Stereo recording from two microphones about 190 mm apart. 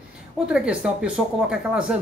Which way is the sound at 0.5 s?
5° right (ahead or behind).